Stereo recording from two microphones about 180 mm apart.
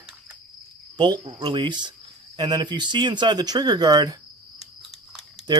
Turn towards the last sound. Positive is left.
turn(degrees=-25)  # may be behind; listen again after turning